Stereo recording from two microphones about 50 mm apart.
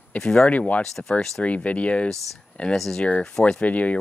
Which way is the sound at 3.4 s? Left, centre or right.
Left.